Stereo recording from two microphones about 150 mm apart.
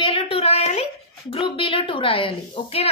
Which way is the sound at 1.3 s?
35° left (ahead or behind).